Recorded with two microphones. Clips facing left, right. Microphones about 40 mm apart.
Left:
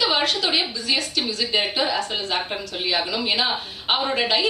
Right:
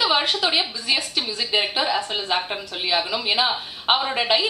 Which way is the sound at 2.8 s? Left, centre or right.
Centre.